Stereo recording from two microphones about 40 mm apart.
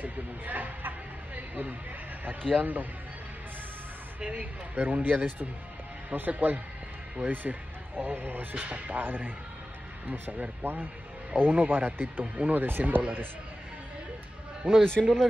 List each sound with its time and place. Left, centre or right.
0.0 s speech: right
4.2 s speech: right
5.0 s speech: right
8.0 s speech: right
8.5 s speech: right
8.9 s speech: right
14.9 s a man's voice: centre